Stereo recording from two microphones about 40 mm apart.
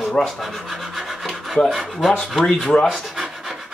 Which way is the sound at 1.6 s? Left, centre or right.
Centre.